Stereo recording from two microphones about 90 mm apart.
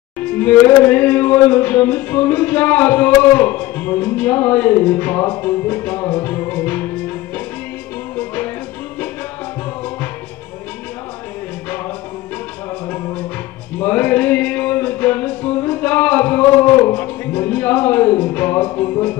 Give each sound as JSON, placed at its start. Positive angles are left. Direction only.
{"t": 0.2, "sound": "music", "side_deg": 15}
{"t": 13.7, "sound": "music", "side_deg": 20}